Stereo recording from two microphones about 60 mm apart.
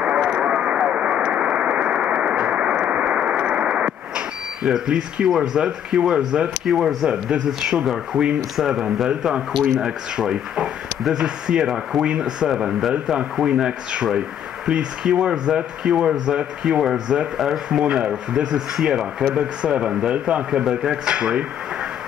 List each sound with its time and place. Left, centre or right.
0.0 s radio: centre
4.6 s speech: centre
6.6 s speech: centre
7.1 s speech: centre
9.1 s speech: centre
18.8 s speech: centre